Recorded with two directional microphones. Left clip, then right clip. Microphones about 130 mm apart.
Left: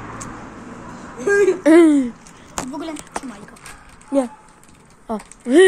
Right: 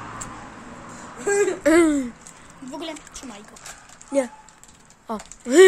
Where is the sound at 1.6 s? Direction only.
10° right (ahead or behind).